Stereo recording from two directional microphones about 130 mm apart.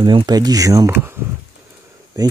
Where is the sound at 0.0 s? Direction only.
40° right (ahead or behind); by 1.1 s 25° right (ahead or behind).